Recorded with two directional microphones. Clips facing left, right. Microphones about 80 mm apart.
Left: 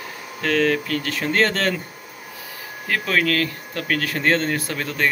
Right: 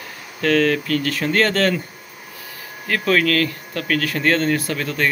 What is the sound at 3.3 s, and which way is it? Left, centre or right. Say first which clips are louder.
Speech: right 3 dB; left.